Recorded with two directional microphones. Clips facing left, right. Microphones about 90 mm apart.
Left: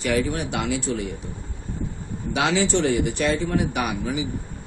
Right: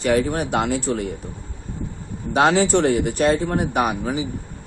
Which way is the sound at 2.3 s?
45° right (ahead or behind).